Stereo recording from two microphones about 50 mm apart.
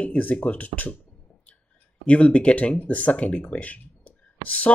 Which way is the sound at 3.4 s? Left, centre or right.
Left.